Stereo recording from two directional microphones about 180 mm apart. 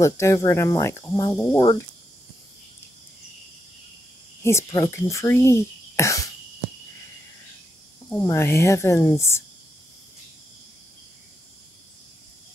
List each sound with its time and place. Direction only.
0.0 s speech: 15° left (ahead or behind)
1.6 s speech: 25° left (ahead or behind)
4.4 s speech: 15° left (ahead or behind)
8.1 s speech: 15° left (ahead or behind)